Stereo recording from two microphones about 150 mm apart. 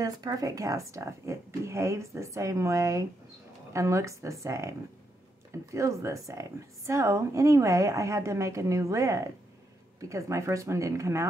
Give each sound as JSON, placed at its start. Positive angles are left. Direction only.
{"t": 0.0, "sound": "speech", "side_deg": -25}